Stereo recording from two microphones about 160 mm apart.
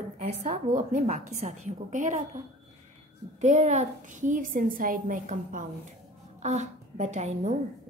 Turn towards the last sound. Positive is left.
turn(degrees=-45)  # may be behind; listen again after turning